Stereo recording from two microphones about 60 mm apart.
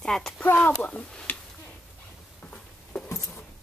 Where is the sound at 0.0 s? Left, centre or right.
Centre.